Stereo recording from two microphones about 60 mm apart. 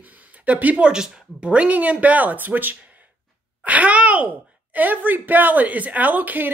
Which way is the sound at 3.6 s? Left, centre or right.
Right.